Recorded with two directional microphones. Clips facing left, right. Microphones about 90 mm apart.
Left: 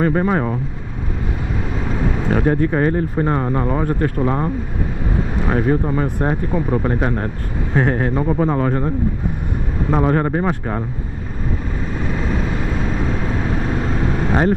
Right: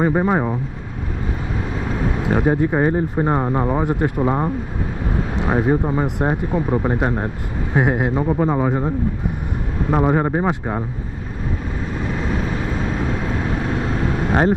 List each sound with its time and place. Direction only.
0.0 s a man's voice: 15° right (ahead or behind)
1.9 s a man's voice: 10° right (ahead or behind)
12.7 s vehicle: 10° right (ahead or behind)